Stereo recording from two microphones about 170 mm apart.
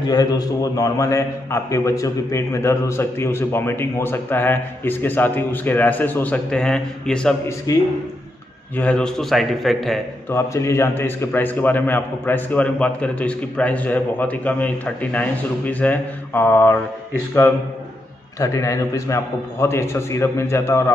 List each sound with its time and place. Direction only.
0.0 s a man's voice: 20° left (ahead or behind); by 7.3 s 5° left (ahead or behind)
7.7 s speech: 20° left (ahead or behind)
8.7 s a man's voice: 5° left (ahead or behind)
10.3 s a man's voice: 15° left (ahead or behind)